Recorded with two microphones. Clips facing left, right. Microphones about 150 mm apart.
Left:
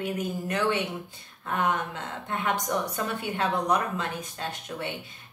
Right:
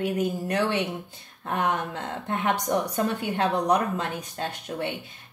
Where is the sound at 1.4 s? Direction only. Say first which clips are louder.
Right 1 dB; 40° right (ahead or behind).